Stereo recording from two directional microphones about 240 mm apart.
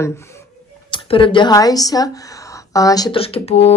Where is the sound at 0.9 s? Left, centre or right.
Left.